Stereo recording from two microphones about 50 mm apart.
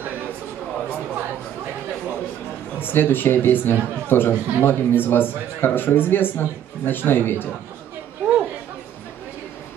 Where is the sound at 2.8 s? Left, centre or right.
Left.